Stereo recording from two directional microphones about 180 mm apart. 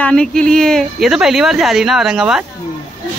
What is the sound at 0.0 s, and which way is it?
Speech, 5° left (ahead or behind).